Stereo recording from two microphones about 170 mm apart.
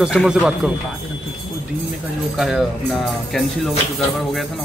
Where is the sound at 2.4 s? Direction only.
Centre (ahead or behind).